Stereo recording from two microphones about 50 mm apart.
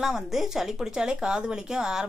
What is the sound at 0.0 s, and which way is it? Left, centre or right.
Speech, centre.